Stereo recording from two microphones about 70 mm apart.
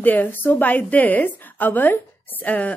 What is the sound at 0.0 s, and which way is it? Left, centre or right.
A woman's voice, left.